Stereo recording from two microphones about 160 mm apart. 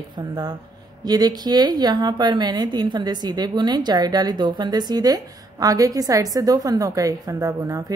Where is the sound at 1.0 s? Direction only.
25° right (ahead or behind).